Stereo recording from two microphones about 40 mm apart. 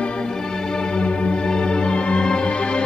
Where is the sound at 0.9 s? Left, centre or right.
Left.